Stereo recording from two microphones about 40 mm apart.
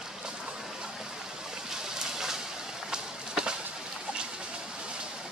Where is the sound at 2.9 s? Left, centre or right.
Centre.